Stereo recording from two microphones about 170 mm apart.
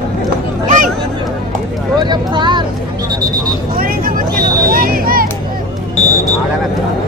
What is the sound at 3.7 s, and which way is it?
Vehicle, 60° right (ahead or behind).